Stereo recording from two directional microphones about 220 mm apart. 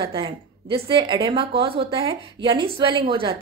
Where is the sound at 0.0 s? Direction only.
25° right (ahead or behind).